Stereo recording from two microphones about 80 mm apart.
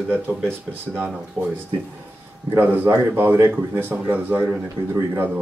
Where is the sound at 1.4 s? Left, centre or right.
Centre.